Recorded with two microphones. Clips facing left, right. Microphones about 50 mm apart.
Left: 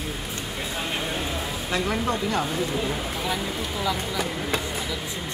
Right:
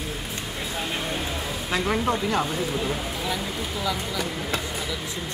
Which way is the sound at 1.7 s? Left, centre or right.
Centre.